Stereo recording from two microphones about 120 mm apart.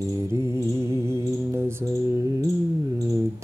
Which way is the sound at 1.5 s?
20° right (ahead or behind).